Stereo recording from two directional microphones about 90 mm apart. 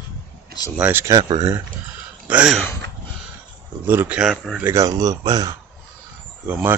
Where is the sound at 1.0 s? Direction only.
40° right (ahead or behind).